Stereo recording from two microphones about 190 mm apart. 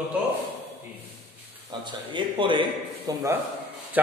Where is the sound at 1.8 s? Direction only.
25° right (ahead or behind).